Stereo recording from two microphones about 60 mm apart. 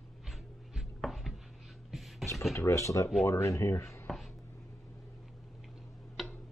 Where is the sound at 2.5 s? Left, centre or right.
Left.